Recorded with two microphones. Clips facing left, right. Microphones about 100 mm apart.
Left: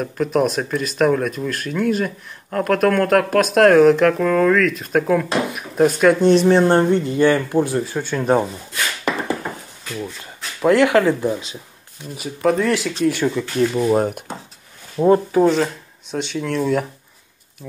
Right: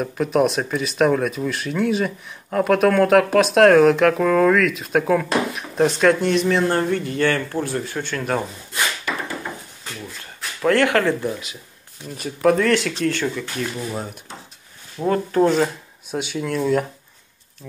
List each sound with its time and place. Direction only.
0.0 s speech: centre (ahead or behind)
6.3 s speech: 30° left (ahead or behind)
10.6 s speech: 20° left (ahead or behind)
12.2 s speech: centre (ahead or behind); by 13.8 s 20° left (ahead or behind)
13.8 s speech: 55° left (ahead or behind)
15.0 s speech: 25° left (ahead or behind)
15.3 s speech: centre (ahead or behind)